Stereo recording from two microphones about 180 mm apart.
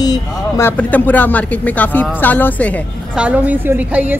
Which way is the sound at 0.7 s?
10° left (ahead or behind).